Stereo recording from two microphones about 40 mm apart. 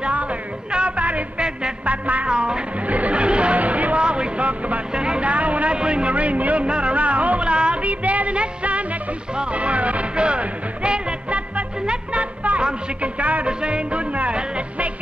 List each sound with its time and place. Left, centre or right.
0.0 s music: right
1.9 s speech: right
2.2 s speech: right
2.9 s music: right
4.0 s vehicle: right
4.9 s vehicle: right
5.8 s a man's voice: right
6.6 s music: right
7.8 s music: right
13.0 s speech: right
13.5 s music: right